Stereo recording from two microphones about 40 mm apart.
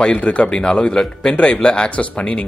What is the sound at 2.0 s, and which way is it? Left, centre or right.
Speech, left.